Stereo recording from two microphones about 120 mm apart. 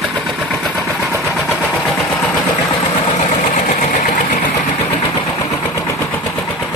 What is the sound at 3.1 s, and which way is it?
Engine, 60° left (ahead or behind).